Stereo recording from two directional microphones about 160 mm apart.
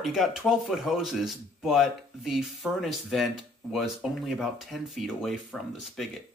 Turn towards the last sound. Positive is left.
turn(degrees=0)  # may be behind; listen again after turning